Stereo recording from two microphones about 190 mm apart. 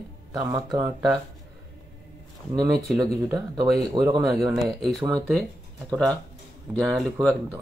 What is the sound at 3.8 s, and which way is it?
Speech, 20° right (ahead or behind).